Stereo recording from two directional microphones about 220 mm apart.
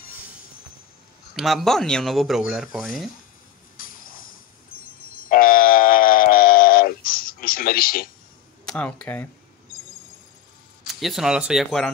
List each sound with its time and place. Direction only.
1.3 s speech: centre (ahead or behind)
3.7 s a sound: 40° left (ahead or behind)
8.6 s speech: 5° left (ahead or behind)
10.9 s speech: centre (ahead or behind)